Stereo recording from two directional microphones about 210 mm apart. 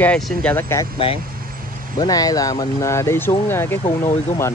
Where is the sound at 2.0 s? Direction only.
20° left (ahead or behind).